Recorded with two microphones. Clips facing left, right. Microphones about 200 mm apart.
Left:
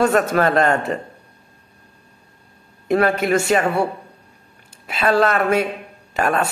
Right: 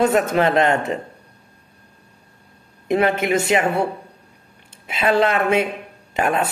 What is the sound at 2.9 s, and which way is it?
Speech, 20° right (ahead or behind).